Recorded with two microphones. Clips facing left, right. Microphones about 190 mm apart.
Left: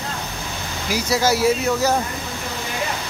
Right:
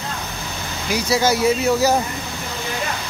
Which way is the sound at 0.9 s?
Centre (ahead or behind).